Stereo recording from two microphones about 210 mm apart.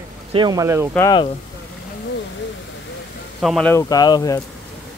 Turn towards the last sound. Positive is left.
turn(degrees=20)  # may be behind; listen again after turning